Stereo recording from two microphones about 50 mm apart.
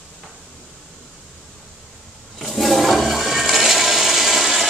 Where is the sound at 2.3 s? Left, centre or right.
Centre.